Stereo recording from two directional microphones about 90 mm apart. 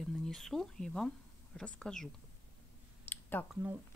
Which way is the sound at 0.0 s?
5° left (ahead or behind).